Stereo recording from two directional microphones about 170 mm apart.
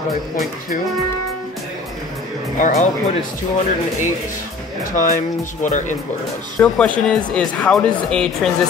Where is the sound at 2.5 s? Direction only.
45° left (ahead or behind).